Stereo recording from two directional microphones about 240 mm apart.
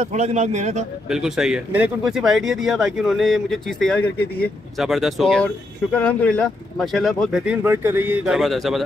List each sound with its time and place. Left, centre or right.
0.0 s a man's voice: right
1.0 s speech: centre